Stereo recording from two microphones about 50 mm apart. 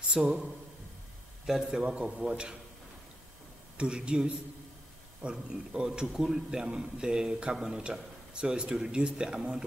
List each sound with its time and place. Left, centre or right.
0.1 s a man's voice: centre
1.4 s a man's voice: centre
1.7 s a man's voice: centre
3.7 s a man's voice: centre
7.8 s a man's voice: centre